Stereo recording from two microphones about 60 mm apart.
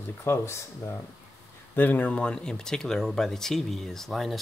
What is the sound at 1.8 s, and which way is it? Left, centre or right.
Speech, left.